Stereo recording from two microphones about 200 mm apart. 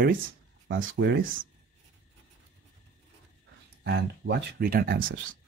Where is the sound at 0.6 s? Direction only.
75° right (ahead or behind); by 1.5 s 45° right (ahead or behind).